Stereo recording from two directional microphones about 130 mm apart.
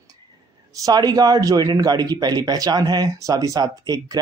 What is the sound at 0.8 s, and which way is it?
Speech, 30° right (ahead or behind).